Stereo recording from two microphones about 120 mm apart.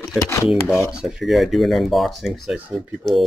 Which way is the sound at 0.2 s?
25° left (ahead or behind).